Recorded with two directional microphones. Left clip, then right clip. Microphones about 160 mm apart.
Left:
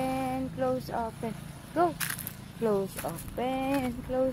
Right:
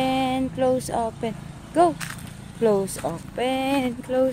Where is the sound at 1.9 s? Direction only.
65° left (ahead or behind).